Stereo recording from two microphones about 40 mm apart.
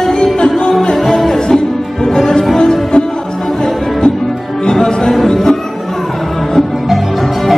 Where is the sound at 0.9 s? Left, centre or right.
Centre.